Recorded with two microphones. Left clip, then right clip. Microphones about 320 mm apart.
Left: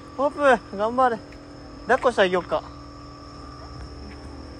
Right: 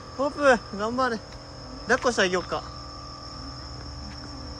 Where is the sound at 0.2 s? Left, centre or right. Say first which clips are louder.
Left 2 dB; centre.